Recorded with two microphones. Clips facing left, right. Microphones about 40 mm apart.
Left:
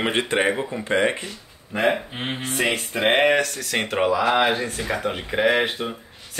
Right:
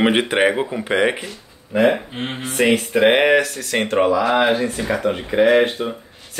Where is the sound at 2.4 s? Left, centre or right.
Centre.